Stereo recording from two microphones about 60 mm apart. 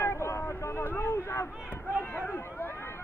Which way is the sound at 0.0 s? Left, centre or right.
Left.